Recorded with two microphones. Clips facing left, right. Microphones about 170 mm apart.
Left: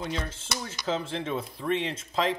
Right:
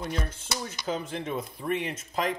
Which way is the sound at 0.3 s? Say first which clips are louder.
Right 1 dB; 25° left (ahead or behind).